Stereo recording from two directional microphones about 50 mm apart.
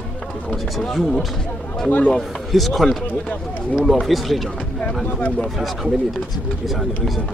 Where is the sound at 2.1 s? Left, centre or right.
Centre.